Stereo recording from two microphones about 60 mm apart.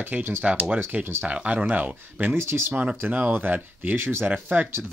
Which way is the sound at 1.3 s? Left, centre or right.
Right.